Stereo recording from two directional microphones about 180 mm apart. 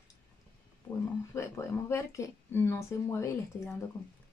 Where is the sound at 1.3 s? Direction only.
15° left (ahead or behind).